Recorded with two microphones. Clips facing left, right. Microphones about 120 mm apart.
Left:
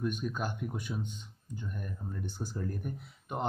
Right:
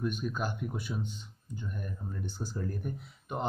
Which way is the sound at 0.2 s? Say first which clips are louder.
Right 1 dB; 5° right (ahead or behind).